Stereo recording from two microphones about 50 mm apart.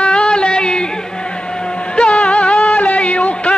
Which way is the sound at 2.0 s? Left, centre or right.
Left.